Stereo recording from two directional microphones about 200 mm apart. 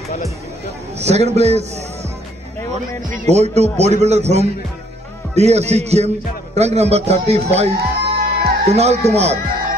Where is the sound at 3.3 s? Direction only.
35° right (ahead or behind).